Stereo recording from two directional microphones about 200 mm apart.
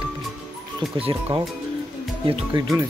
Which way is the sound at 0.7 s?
30° right (ahead or behind).